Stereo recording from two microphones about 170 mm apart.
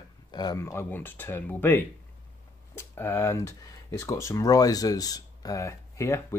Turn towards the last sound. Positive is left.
turn(degrees=15)  # may be behind; listen again after turning